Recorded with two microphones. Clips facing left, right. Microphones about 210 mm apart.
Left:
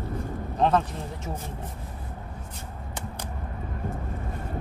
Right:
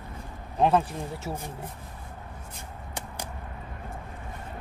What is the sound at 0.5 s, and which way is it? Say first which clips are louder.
Speech: right 1 dB; 10° right (ahead or behind).